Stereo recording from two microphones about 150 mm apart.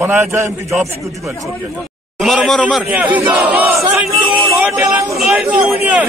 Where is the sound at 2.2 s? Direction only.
Centre (ahead or behind).